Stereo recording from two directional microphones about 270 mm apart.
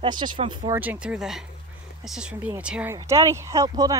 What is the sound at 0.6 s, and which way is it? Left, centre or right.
Speech, centre.